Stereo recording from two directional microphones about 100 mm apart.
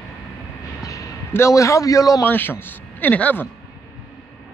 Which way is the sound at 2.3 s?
20° left (ahead or behind).